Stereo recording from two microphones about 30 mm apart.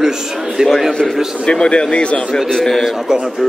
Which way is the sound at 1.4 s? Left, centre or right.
Left.